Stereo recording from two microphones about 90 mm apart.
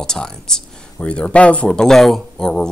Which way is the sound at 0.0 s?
5° left (ahead or behind).